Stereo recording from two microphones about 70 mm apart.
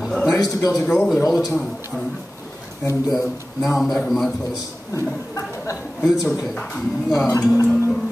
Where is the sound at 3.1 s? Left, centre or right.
Centre.